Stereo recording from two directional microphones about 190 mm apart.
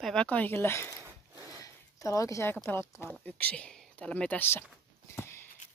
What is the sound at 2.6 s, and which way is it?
Speech, 10° left (ahead or behind).